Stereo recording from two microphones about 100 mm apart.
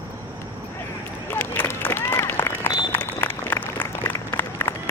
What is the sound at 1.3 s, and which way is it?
Run, 20° left (ahead or behind).